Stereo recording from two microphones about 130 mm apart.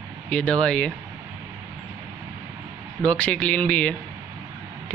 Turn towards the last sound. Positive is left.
turn(degrees=10)  # may be behind; listen again after turning